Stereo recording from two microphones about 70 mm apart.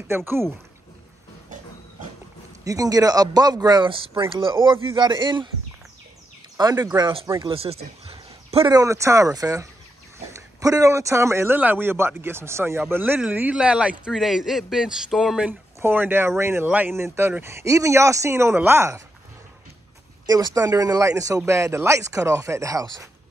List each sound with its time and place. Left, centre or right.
0.1 s speech: right
2.6 s speech: right
4.6 s speech: centre
4.9 s a sound: right
6.7 s speech: right
8.8 s speech: right
11.5 s speech: right
12.8 s a man's voice: right; by 15.4 s centre
15.8 s speech: right
16.6 s speech: right
16.9 s speech: right
20.2 s speech: right